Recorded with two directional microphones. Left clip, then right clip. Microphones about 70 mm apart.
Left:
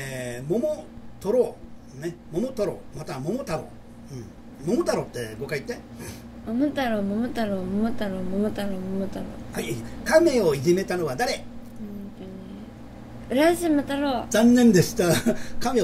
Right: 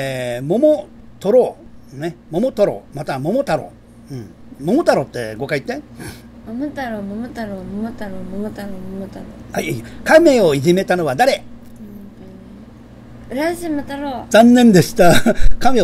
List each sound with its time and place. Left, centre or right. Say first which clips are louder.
0.2 s a woman's voice: right 11 dB; right
4.8 s speech: right 11 dB; right
6.4 s a woman's voice: even; centre
9.6 s a woman's voice: right 9 dB; right
13.3 s a woman's voice: even; centre
14.3 s a woman's voice: right 10 dB; right